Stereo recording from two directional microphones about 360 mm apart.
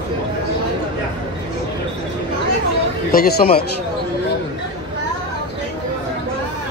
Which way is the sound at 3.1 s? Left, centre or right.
Left.